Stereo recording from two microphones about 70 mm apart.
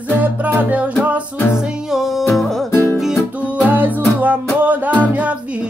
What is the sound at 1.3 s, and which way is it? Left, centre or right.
Music, left.